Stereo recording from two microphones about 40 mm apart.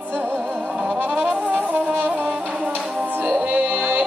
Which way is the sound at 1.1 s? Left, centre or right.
Right.